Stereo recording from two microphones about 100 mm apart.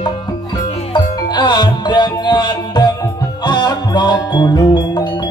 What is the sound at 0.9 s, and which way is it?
Music, 50° left (ahead or behind).